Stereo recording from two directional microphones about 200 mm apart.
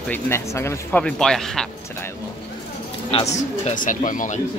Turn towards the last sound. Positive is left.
turn(degrees=40)  # may be behind; listen again after turning